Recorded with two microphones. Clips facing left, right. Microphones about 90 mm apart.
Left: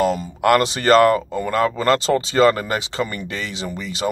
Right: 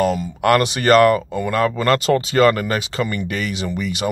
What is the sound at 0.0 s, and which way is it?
Speech, 35° left (ahead or behind).